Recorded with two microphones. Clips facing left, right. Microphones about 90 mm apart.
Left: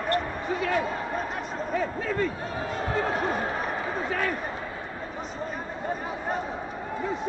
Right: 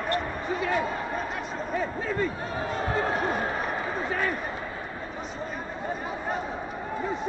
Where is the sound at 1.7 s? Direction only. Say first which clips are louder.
Left 1 dB; 90° left.